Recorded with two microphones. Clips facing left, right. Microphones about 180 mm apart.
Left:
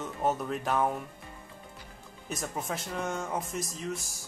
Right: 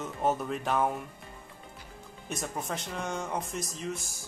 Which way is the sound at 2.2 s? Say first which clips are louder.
Even; centre (ahead or behind).